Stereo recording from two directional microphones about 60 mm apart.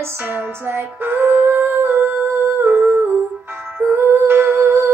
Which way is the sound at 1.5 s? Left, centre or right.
Right.